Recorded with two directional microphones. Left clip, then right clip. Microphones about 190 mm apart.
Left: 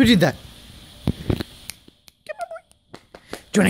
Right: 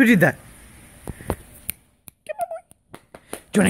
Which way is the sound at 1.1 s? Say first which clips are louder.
Left 9 dB; 5° left (ahead or behind).